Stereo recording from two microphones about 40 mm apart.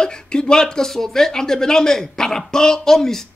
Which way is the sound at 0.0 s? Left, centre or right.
Left.